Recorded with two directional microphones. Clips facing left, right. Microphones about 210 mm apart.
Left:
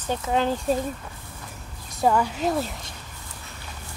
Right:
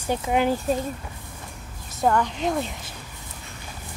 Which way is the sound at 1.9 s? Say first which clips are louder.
Even; 5° left (ahead or behind).